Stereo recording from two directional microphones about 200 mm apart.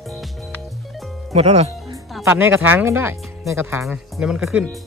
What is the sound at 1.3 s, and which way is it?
Speech, 35° right (ahead or behind).